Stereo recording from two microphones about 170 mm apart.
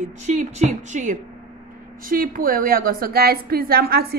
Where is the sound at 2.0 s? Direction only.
55° right (ahead or behind).